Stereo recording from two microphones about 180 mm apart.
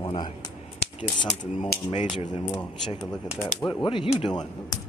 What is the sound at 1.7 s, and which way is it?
Speech, 60° left (ahead or behind).